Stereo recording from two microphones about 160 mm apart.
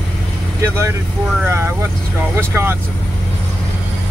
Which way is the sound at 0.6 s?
15° right (ahead or behind).